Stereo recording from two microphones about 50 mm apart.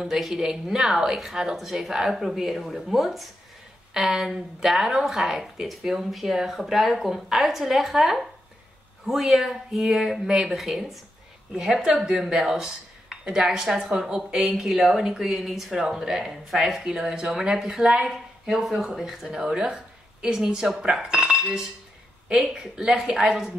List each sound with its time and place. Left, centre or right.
0.0 s a woman's voice: centre
19.3 s speech: centre